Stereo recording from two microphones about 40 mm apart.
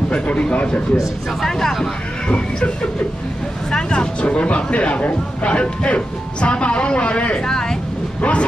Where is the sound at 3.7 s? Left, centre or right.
Left.